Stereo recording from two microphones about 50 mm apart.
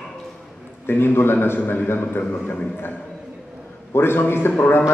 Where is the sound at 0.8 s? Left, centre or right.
Left.